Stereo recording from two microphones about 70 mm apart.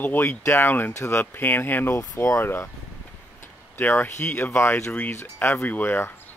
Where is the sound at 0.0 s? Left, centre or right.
Left.